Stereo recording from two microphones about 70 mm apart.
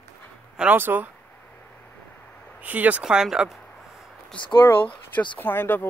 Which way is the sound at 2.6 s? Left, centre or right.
Right.